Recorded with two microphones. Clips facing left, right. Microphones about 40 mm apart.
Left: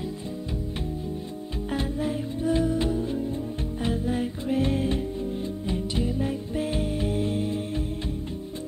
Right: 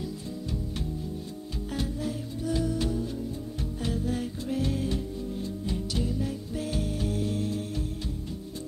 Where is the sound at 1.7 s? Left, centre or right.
Left.